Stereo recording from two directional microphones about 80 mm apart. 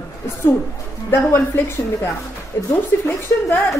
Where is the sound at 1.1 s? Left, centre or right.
Left.